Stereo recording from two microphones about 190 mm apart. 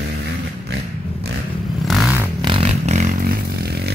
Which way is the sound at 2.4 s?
30° right (ahead or behind).